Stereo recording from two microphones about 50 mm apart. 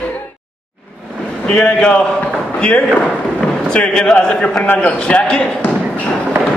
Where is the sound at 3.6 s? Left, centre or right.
Centre.